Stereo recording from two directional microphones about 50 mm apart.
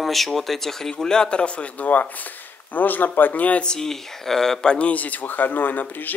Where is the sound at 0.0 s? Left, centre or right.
Centre; by 3.6 s left.